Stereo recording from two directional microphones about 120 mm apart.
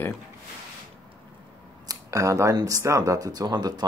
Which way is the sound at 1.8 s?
25° right (ahead or behind).